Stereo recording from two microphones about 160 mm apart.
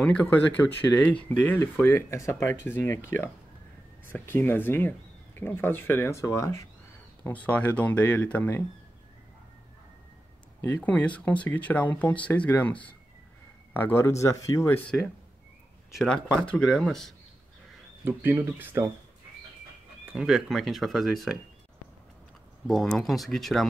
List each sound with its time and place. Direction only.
0.0 s speech: 10° left (ahead or behind)
4.0 s speech: 15° left (ahead or behind)
10.7 s speech: 10° left (ahead or behind)
18.0 s speech: 15° right (ahead or behind)
20.1 s speech: 5° right (ahead or behind)
22.7 s speech: 5° left (ahead or behind)